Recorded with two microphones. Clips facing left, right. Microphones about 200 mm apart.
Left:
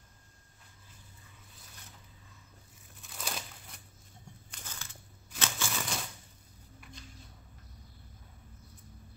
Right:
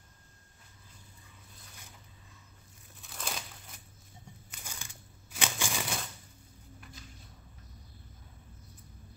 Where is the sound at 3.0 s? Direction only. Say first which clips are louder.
Even; centre (ahead or behind).